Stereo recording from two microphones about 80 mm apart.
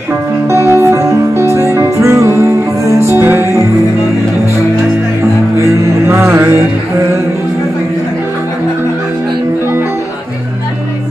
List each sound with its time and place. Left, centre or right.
0.5 s music: right
5.6 s music: right